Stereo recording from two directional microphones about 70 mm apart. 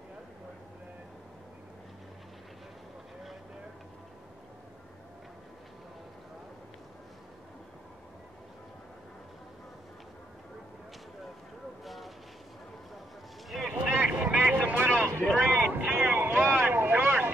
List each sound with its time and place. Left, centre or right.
11.8 s vehicle: centre
13.5 s boat: centre
13.9 s vehicle: right
15.3 s a sound: right